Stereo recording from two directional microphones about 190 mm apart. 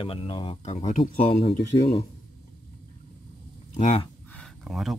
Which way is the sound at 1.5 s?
60° left (ahead or behind).